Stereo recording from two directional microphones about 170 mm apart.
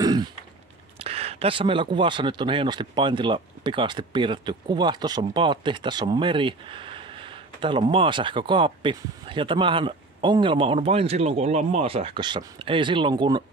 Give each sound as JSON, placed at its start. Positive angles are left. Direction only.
{"t": 0.0, "sound": "throat clearing", "side_deg": -25}
{"t": 0.9, "sound": "speech", "side_deg": -35}